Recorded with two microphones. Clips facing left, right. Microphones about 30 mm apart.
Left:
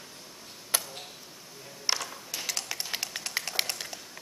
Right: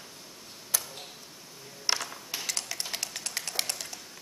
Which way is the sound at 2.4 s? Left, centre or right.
Centre.